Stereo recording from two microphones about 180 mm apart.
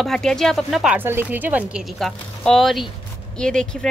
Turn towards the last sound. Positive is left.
turn(degrees=5)  # may be behind; listen again after turning